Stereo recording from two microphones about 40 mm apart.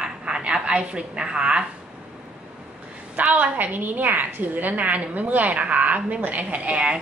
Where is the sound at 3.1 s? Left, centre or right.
Right.